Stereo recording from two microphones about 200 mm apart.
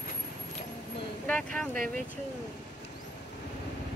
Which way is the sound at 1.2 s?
5° left (ahead or behind).